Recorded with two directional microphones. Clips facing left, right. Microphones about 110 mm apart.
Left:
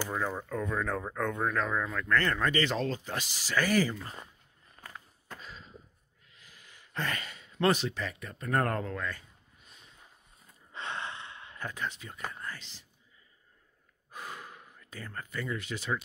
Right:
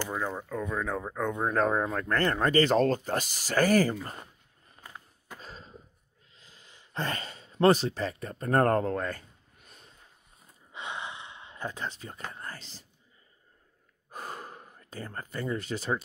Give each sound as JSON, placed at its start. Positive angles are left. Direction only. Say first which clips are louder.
{"t": 0.1, "sound": "speech", "louder": "even", "side_deg": -5}
{"t": 1.5, "sound": "speech", "louder": "right 5 dB", "side_deg": -40}
{"t": 4.8, "sound": "walk", "louder": "even", "side_deg": -15}
{"t": 5.4, "sound": "a sound", "louder": "right 2 dB", "side_deg": -40}
{"t": 6.3, "sound": "a sound", "louder": "right 1 dB", "side_deg": -25}
{"t": 10.7, "sound": "gasp", "louder": "even", "side_deg": -15}
{"t": 12.3, "sound": "speech", "louder": "left 3 dB", "side_deg": -35}
{"t": 14.1, "sound": "gasp", "louder": "right 3 dB", "side_deg": -40}